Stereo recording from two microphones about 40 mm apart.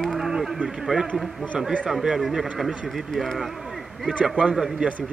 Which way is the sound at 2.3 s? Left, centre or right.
Centre.